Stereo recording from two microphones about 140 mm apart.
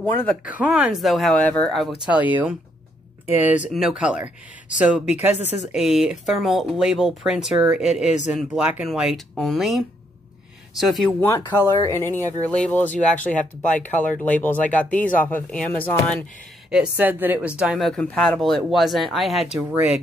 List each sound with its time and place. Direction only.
0.5 s speech: 10° right (ahead or behind)
2.0 s speech: 10° right (ahead or behind)
11.1 s speech: 20° left (ahead or behind)
16.7 s speech: 10° right (ahead or behind)
17.6 s speech: centre (ahead or behind)